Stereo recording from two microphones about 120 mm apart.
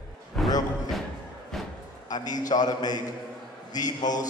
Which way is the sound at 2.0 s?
35° left (ahead or behind).